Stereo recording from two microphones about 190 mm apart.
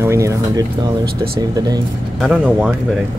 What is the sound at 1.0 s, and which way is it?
Speech, 55° right (ahead or behind).